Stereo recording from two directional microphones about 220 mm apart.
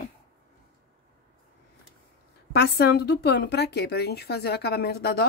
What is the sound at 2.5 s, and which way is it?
Speech, 45° left (ahead or behind).